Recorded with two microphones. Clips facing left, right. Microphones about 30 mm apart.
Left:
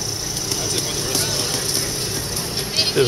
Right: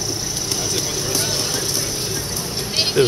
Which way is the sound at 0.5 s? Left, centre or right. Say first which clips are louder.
Even; centre.